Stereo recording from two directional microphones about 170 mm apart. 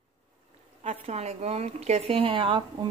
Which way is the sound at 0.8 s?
40° right (ahead or behind).